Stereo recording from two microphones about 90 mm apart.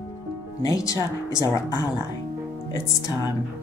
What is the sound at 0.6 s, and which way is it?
Speech, 40° left (ahead or behind).